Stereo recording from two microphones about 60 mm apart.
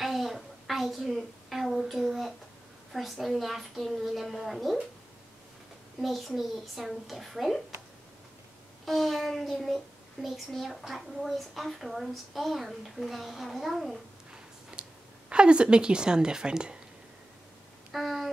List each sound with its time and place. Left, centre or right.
0.0 s a sound: centre
2.9 s a woman's voice: centre
5.9 s a woman's voice: centre
8.8 s a woman's voice: centre
14.3 s a sound: centre
17.9 s a woman's voice: centre